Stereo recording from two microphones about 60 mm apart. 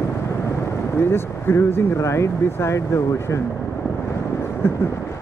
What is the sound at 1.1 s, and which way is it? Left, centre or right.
Speech, left.